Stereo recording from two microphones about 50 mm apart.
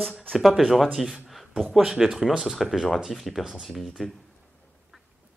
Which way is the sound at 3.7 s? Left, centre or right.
Centre.